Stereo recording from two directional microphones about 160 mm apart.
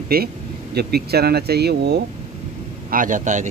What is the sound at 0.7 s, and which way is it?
Speech, 80° right.